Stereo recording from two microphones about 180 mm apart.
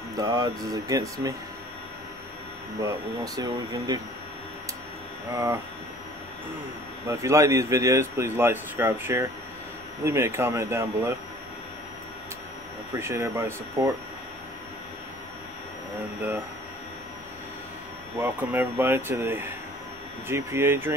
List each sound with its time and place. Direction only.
0.2 s speech: 20° right (ahead or behind)
3.3 s speech: 20° right (ahead or behind)
5.3 s a man's voice: 15° right (ahead or behind)
7.1 s a man's voice: 15° right (ahead or behind)
13.0 s a man's voice: 15° right (ahead or behind)
18.2 s a man's voice: 10° right (ahead or behind)